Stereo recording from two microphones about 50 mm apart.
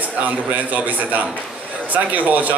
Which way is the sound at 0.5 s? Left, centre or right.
Right.